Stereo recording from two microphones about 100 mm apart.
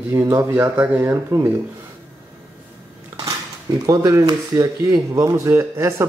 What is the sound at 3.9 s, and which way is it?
Speech, 35° right (ahead or behind).